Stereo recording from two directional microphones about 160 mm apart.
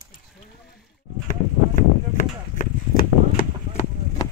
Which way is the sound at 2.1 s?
60° left (ahead or behind).